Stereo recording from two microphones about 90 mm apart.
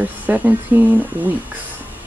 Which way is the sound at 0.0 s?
20° right (ahead or behind).